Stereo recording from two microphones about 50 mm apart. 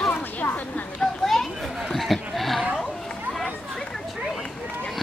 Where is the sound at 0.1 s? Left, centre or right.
Left.